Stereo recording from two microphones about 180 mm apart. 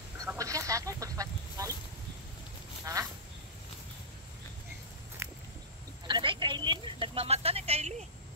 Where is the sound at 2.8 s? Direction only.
20° right (ahead or behind).